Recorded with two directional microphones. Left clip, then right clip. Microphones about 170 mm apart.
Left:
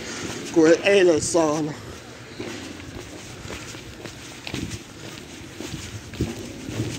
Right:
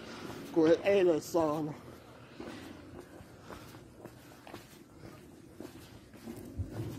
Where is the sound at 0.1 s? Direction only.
5° right (ahead or behind).